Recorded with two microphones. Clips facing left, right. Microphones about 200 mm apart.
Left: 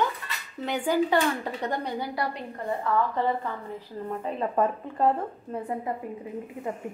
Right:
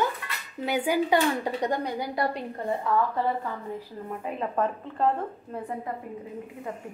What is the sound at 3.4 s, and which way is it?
Speech, 5° right (ahead or behind).